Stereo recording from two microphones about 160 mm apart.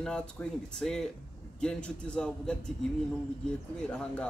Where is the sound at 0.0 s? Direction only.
5° left (ahead or behind).